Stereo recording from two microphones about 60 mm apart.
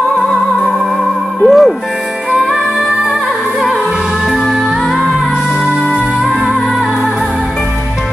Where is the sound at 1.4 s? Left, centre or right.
Centre.